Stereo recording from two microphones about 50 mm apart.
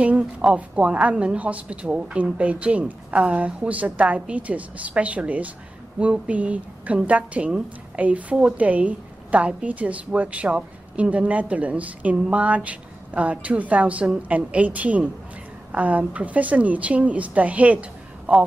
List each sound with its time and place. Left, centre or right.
0.0 s a woman's voice: right